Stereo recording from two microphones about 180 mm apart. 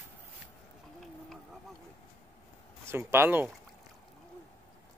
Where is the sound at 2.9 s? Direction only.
15° right (ahead or behind).